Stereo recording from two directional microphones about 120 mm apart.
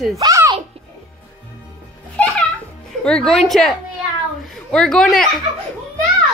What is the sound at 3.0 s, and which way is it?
A child's voice, 5° left (ahead or behind).